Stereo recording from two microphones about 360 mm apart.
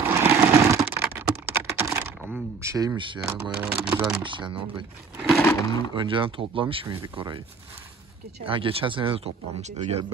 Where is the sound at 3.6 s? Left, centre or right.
Centre.